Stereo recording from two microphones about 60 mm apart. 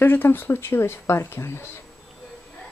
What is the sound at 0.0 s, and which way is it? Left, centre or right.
Speech, left.